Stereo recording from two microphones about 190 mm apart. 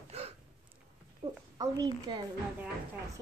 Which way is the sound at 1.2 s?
30° right (ahead or behind).